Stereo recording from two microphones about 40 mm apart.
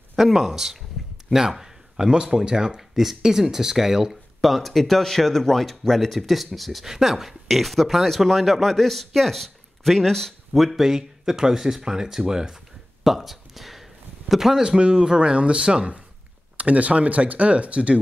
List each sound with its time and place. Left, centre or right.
0.1 s speech: centre
1.0 s a sound: centre
2.2 s speech: centre
10.5 s speech: centre
13.0 s a sound: centre
14.3 s speech: centre
14.6 s speech: right